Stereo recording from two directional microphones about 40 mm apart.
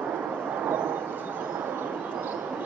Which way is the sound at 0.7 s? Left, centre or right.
Right.